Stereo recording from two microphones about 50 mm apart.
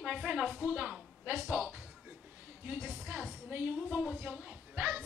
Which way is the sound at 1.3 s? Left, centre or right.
Right.